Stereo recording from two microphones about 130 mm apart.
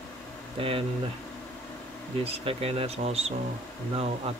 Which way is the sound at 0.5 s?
45° right (ahead or behind).